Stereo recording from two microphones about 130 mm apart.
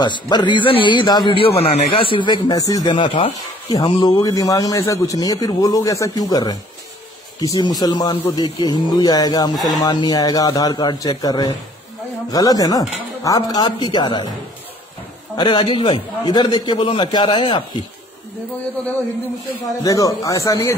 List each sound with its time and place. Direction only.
0.0 s a man's voice: 35° left (ahead or behind)
15.3 s a man's voice: 40° left (ahead or behind)
19.8 s a man's voice: 25° left (ahead or behind)